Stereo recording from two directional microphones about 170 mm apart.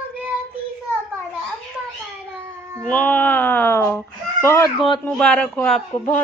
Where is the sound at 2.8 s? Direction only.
5° left (ahead or behind).